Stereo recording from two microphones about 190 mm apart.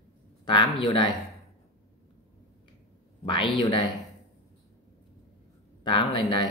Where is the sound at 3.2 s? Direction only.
25° left (ahead or behind).